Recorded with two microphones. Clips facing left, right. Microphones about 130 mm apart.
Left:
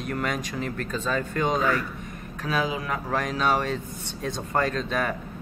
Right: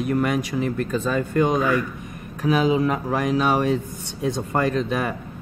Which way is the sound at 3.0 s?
10° right (ahead or behind).